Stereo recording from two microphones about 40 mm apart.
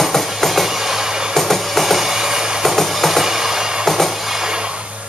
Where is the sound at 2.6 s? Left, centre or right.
Centre.